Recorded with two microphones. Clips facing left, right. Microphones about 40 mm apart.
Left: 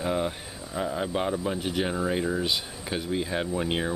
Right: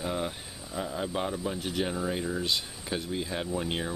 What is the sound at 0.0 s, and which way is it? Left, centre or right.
Speech, centre.